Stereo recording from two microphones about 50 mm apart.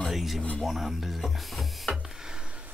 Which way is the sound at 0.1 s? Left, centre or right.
Centre.